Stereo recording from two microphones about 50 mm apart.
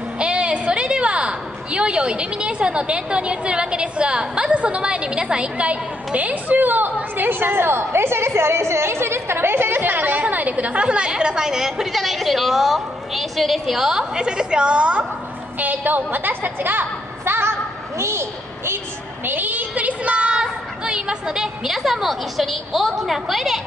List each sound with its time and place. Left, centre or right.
0.2 s a woman's voice: centre
15.6 s a woman's voice: right
17.2 s a sound: right
19.2 s a woman's voice: right; by 23.6 s centre